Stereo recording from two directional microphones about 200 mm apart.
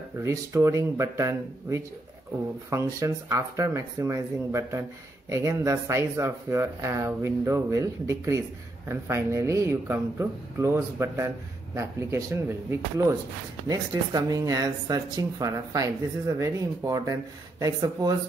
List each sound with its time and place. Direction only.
0.2 s speech: 15° right (ahead or behind)